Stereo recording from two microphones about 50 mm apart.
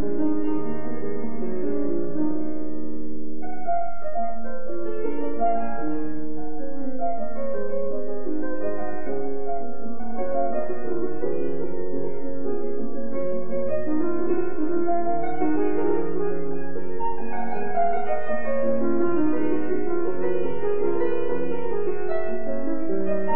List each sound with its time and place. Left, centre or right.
0.1 s music: right
1.6 s music: right
3.6 s music: right
10.3 s music: right
13.2 s music: right
17.7 s music: right
19.8 s music: right
23.0 s music: right